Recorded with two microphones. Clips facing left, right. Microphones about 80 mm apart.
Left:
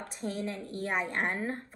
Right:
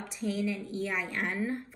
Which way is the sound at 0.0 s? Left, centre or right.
Left.